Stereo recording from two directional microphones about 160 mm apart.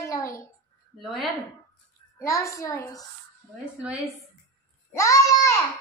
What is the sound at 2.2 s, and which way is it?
Speech, 20° left (ahead or behind).